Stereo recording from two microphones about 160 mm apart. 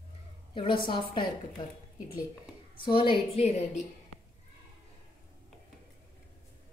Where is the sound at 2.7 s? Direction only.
30° left (ahead or behind).